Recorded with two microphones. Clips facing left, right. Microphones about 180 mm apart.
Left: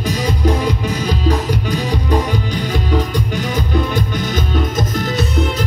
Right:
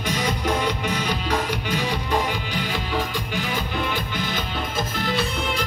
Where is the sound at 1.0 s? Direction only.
35° left (ahead or behind).